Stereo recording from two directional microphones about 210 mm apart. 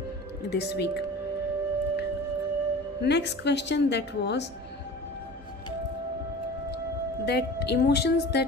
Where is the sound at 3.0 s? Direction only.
55° left (ahead or behind).